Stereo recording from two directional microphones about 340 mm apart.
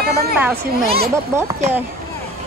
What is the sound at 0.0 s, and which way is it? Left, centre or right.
Speech, right.